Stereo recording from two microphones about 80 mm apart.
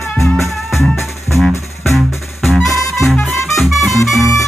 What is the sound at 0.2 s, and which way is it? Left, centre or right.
Music, left.